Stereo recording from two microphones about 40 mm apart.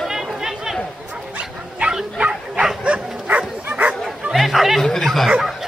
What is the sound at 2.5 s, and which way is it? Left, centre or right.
Bow-wow, centre.